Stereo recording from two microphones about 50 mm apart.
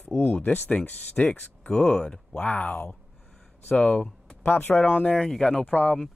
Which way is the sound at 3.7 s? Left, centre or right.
Left.